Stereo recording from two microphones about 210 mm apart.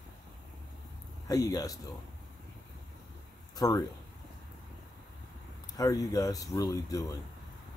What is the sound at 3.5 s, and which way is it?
Speech, 15° left (ahead or behind).